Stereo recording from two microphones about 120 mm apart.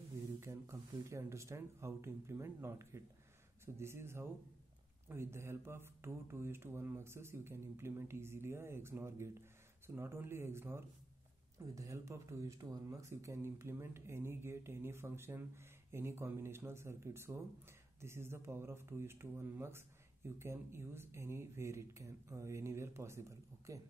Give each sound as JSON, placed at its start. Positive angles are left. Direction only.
{"t": 0.4, "sound": "speech", "side_deg": -25}